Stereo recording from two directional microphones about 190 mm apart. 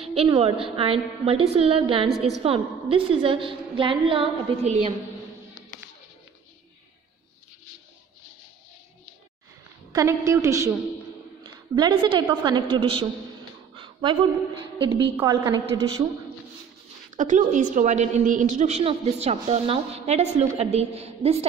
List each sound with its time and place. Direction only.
0.0 s a sound: 30° right (ahead or behind)
0.4 s a woman's voice: 30° right (ahead or behind)
9.9 s a woman's voice: 15° right (ahead or behind)
14.8 s a woman's voice: 25° right (ahead or behind)
17.2 s a woman's voice: 40° right (ahead or behind)